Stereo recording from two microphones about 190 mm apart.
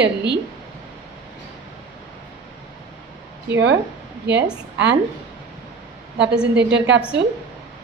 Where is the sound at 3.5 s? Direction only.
65° right (ahead or behind).